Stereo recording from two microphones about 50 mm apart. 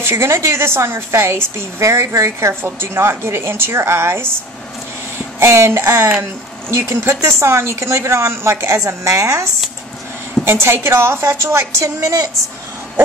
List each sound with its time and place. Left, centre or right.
0.0 s a woman's voice: right
2.6 s a woman's voice: right
5.4 s speech: right
10.4 s a woman's voice: right